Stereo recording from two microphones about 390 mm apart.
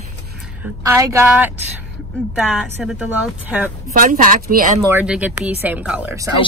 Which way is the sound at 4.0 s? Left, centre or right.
Right.